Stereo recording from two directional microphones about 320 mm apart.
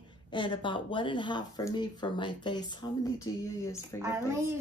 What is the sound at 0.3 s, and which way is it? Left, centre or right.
Speech, centre.